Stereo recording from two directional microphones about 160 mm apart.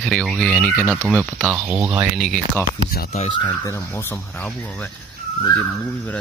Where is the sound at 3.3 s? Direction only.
30° left (ahead or behind).